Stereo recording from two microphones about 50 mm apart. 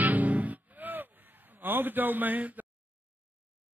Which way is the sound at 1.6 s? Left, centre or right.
Right.